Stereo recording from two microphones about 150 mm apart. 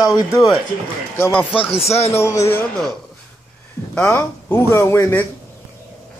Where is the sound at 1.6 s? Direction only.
40° left (ahead or behind).